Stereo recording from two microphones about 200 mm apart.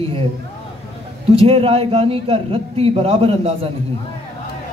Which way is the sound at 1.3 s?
30° right (ahead or behind).